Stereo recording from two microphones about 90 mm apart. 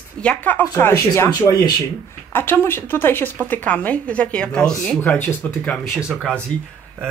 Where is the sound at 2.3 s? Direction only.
25° left (ahead or behind).